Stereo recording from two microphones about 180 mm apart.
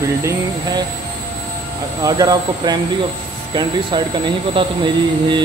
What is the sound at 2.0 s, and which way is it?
Speech, 20° right (ahead or behind).